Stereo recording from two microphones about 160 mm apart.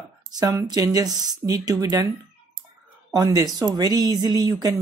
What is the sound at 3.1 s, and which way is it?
Speech, 25° right (ahead or behind).